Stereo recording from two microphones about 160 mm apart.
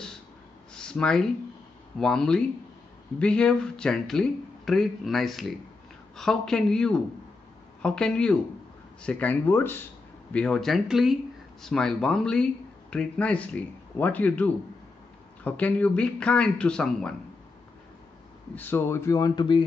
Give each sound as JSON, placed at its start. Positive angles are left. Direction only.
{"t": 0.7, "sound": "a sound", "side_deg": 5}
{"t": 2.0, "sound": "speech", "side_deg": 5}
{"t": 18.5, "sound": "speech", "side_deg": 10}